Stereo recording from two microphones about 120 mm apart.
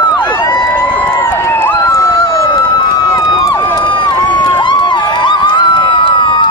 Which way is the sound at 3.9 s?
40° left (ahead or behind).